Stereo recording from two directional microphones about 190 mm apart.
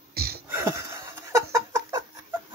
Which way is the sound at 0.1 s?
55° right (ahead or behind).